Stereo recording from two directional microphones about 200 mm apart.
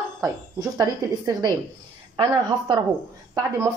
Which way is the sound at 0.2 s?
20° right (ahead or behind).